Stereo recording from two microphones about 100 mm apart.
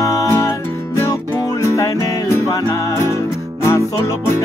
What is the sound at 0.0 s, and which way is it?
Music, 30° left (ahead or behind).